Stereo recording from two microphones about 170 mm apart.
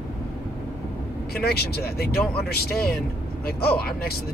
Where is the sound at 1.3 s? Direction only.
70° left (ahead or behind).